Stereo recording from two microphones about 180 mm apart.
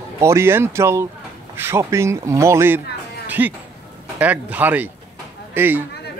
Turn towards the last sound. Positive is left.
turn(degrees=-10)  # may be behind; listen again after turning